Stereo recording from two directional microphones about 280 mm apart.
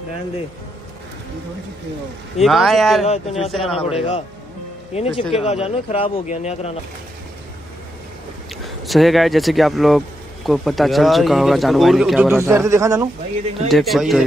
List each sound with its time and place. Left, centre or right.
2.4 s speech: centre
3.1 s speech: left
8.6 s speech: centre